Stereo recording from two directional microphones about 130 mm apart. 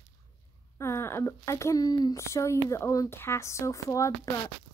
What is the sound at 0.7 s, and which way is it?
Speech, 20° left (ahead or behind).